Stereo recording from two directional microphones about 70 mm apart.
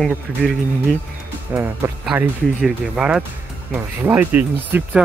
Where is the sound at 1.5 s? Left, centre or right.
Right.